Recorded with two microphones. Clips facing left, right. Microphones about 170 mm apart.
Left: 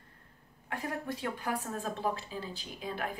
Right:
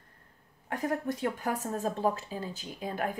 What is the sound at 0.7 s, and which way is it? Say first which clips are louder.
Speech: right 5 dB; 45° right (ahead or behind).